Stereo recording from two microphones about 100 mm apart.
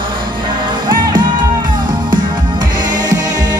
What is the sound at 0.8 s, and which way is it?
Music, 50° right (ahead or behind).